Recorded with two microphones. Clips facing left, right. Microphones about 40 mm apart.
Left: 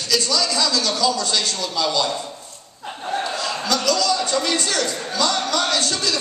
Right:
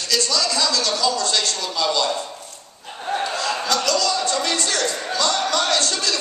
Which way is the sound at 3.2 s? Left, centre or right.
Centre.